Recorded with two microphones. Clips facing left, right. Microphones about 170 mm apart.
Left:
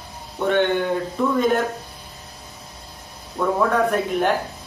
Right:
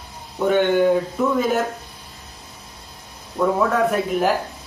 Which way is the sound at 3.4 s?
5° right (ahead or behind).